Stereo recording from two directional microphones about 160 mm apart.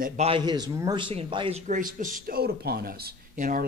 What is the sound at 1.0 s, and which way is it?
Speech, 35° right (ahead or behind).